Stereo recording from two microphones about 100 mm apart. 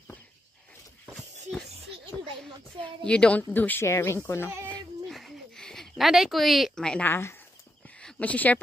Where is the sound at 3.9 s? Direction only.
30° left (ahead or behind).